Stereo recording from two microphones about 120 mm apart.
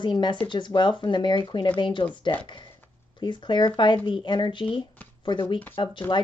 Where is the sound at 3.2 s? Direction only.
40° left (ahead or behind).